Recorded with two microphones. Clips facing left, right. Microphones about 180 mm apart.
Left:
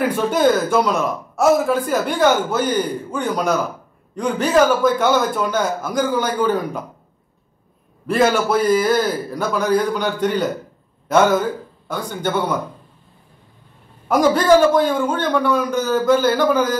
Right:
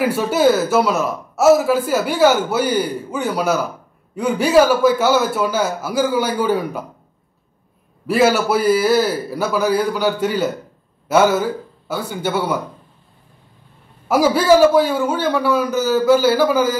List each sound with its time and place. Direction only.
0.0 s speech: 5° right (ahead or behind)
8.1 s speech: 5° right (ahead or behind)
14.0 s speech: 5° right (ahead or behind)